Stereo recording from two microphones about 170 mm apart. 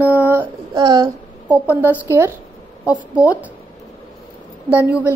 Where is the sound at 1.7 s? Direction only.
10° right (ahead or behind).